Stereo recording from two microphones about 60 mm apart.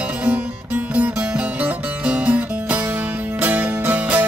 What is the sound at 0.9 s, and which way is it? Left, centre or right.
Music, right.